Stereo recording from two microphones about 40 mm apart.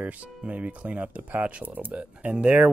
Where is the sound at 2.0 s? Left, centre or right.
Right.